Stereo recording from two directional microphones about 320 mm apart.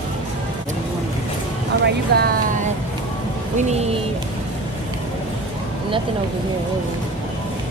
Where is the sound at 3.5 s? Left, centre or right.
Right.